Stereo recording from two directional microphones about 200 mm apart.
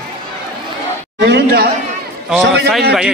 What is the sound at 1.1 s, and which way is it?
Speech, 60° right (ahead or behind).